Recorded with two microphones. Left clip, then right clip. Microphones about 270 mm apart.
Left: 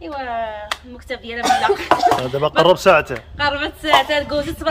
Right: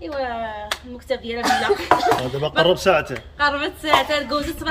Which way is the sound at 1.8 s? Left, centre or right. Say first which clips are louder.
Left 2 dB; left.